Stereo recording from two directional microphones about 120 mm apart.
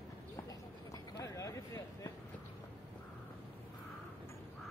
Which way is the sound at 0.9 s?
30° left (ahead or behind).